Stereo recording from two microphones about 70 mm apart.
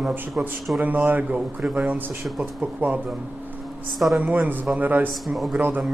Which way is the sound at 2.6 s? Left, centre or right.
Right.